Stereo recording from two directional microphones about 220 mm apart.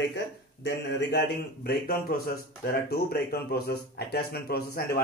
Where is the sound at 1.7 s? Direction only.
40° left (ahead or behind).